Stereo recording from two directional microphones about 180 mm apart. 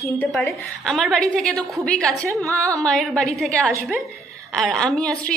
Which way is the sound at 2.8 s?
Centre (ahead or behind).